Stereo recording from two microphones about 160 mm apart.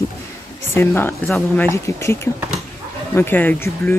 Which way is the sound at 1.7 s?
15° left (ahead or behind).